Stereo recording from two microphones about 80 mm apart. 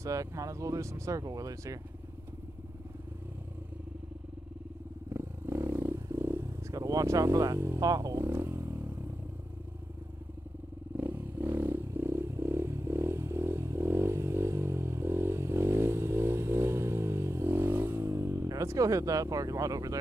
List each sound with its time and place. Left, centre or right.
0.0 s speech: right
5.1 s roar: right
7.8 s speech: right
8.3 s a sound: right
11.0 s a sound: right
18.0 s speech: right